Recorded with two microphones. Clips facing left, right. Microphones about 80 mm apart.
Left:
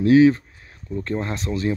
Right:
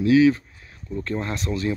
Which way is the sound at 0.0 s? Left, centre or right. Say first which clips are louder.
Left 3 dB; left.